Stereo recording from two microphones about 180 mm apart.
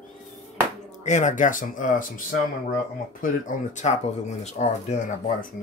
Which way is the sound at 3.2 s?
45° left (ahead or behind).